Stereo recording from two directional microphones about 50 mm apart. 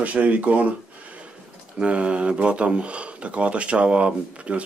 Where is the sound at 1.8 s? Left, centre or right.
Right.